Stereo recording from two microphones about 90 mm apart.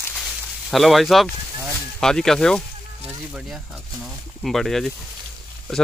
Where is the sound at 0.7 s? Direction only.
Centre (ahead or behind).